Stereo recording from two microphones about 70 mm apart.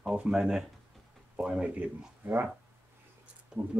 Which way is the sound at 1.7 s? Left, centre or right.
Right.